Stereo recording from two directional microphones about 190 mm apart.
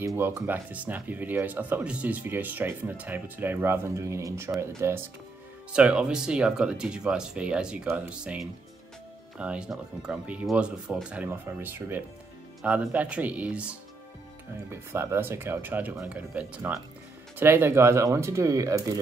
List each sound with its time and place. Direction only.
0.0 s speech: 15° right (ahead or behind)